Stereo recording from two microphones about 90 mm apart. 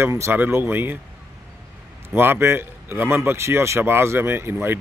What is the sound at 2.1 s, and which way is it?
Speech, 25° right (ahead or behind).